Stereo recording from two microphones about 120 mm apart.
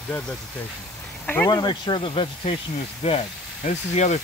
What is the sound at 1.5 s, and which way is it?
Speech, 40° left (ahead or behind).